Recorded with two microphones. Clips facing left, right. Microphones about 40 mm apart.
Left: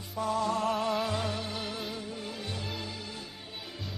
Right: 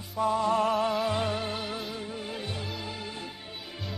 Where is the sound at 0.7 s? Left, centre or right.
Centre.